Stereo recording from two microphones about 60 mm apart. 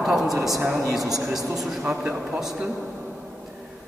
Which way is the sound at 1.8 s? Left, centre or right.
Centre.